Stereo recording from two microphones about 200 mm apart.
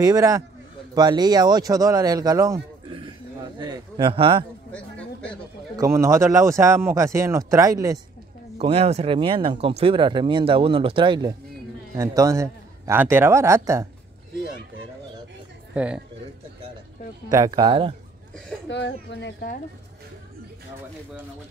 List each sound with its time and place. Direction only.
0.0 s speech: 15° right (ahead or behind)
4.7 s a sound: 5° left (ahead or behind)
5.8 s speech: 15° right (ahead or behind)
8.5 s speech: 30° right (ahead or behind); by 13.8 s 15° right (ahead or behind)
15.7 s speech: 5° right (ahead or behind)
17.3 s speech: 20° right (ahead or behind)
18.7 s speech: 60° left (ahead or behind)